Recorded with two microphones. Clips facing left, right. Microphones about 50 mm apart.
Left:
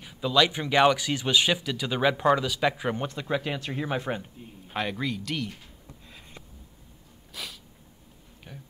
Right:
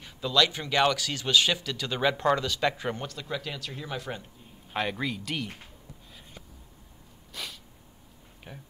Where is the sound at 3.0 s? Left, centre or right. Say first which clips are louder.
Left 6 dB; left.